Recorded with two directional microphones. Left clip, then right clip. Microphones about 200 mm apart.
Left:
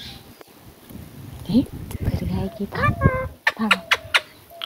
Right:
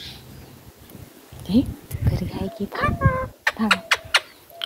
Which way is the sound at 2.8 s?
50° right (ahead or behind).